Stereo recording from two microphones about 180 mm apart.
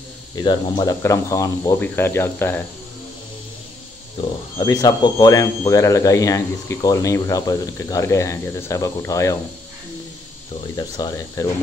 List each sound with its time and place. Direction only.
0.4 s speech: 25° left (ahead or behind)
4.6 s speech: 25° left (ahead or behind)
10.8 s speech: 20° left (ahead or behind)